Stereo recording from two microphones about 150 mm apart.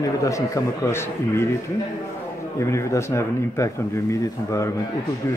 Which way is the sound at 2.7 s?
20° left (ahead or behind).